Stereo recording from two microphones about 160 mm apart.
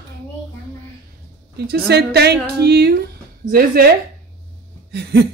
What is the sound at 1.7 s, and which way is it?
Speech, 85° right.